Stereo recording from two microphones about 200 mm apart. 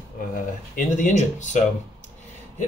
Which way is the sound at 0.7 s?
40° left (ahead or behind).